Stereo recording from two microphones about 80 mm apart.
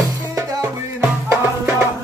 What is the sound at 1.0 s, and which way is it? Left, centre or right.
Music, right.